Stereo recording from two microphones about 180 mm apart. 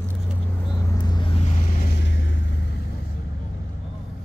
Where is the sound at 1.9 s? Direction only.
90° left.